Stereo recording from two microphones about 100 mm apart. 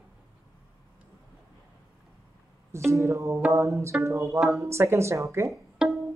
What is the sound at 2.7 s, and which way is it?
Speech, 30° right (ahead or behind).